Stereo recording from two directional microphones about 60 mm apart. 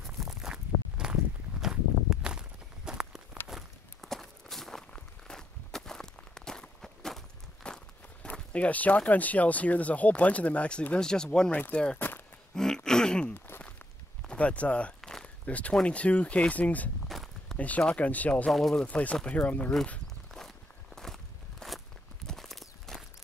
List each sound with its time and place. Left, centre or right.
0.0 s walk: centre
8.3 s speech: left
11.5 s speech: left
12.0 s a sound: left
12.5 s a sound: centre
14.2 s speech: left
15.0 s a sound: centre
15.4 s speech: left
17.1 s a sound: centre
17.6 s speech: left
18.5 s speech: centre
18.9 s speech: left
20.3 s walk: centre